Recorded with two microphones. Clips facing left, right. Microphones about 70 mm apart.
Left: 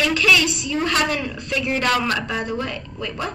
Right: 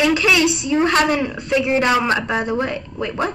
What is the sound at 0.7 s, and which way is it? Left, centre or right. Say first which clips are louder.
Speech: right 5 dB; right.